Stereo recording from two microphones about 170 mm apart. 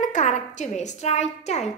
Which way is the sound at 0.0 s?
45° left (ahead or behind).